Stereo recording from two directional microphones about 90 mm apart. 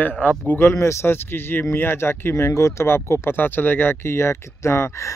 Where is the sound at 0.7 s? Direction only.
30° left (ahead or behind).